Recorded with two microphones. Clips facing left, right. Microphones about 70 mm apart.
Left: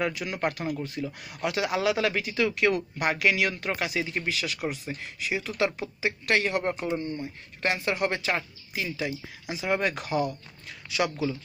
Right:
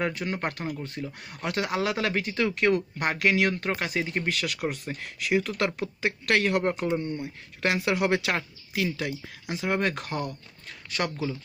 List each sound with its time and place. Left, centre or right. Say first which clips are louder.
0.0 s speech: left 1 dB; right
7.0 s speech: right 1 dB; centre
7.6 s speech: right 2 dB; right